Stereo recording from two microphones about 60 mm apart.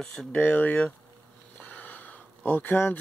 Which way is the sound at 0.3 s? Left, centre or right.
Left.